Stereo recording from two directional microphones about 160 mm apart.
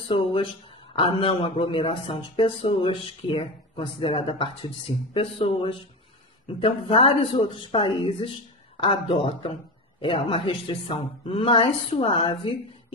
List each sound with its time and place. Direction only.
0.1 s speech: 35° left (ahead or behind)